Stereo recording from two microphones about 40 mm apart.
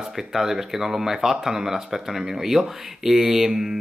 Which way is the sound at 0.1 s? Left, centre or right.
Centre.